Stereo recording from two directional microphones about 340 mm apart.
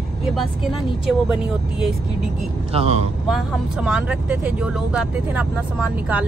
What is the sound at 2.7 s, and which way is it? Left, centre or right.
Speech, centre.